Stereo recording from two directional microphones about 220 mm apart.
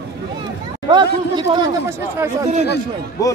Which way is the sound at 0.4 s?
20° right (ahead or behind).